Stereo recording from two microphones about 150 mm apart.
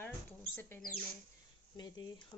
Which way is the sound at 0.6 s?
10° left (ahead or behind).